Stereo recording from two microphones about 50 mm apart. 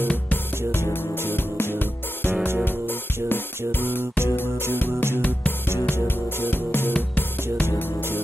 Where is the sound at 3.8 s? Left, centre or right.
Left.